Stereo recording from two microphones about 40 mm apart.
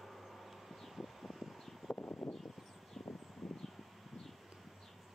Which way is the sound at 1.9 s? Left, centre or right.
Left.